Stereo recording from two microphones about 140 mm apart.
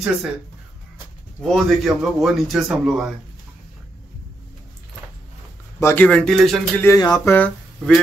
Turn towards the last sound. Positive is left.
turn(degrees=10)  # may be behind; listen again after turning